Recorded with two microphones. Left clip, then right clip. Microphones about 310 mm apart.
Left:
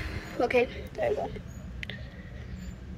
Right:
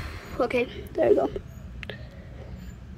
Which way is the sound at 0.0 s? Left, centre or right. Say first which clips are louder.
Right 2 dB; centre.